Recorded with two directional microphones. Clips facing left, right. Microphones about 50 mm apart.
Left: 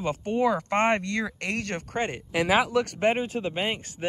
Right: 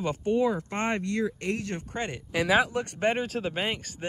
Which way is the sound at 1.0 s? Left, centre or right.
Left.